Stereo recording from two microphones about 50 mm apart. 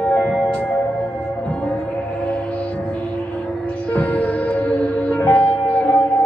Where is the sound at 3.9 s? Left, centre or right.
Left.